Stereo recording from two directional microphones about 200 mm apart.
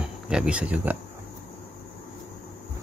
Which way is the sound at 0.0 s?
5° right (ahead or behind).